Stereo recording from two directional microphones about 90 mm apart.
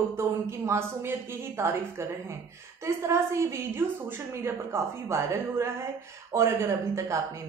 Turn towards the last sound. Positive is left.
turn(degrees=-30)  # may be behind; listen again after turning